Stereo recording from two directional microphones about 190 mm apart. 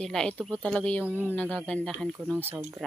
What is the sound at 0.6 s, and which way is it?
Speech, 5° left (ahead or behind).